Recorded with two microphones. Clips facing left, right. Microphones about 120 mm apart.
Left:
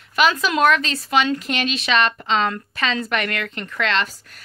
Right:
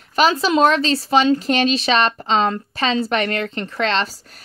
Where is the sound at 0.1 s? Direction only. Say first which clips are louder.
Right 3 dB; 35° right (ahead or behind).